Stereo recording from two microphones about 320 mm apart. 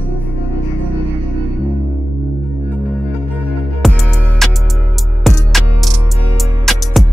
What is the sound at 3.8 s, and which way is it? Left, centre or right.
Music, centre.